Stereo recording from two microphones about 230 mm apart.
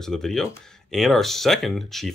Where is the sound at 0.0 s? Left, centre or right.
Centre.